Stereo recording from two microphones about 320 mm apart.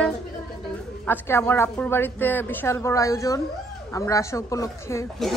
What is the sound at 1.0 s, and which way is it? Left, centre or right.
A woman's voice, centre.